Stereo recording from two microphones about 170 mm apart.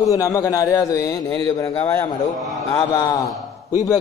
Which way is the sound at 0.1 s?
20° left (ahead or behind).